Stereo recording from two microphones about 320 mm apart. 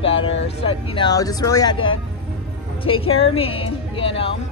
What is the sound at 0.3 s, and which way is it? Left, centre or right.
Vehicle, left.